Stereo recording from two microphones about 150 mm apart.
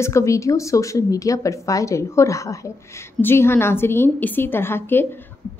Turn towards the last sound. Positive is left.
turn(degrees=15)  # may be behind; listen again after turning